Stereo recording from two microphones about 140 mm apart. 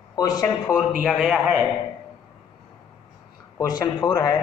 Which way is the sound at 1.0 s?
5° right (ahead or behind).